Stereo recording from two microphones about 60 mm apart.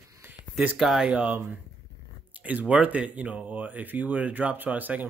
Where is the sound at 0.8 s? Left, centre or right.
Centre.